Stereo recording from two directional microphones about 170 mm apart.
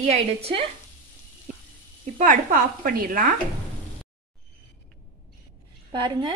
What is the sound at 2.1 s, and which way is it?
Speech, 50° right (ahead or behind).